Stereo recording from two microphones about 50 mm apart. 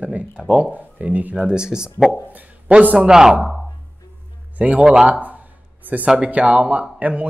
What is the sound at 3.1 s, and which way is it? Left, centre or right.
Speech, centre.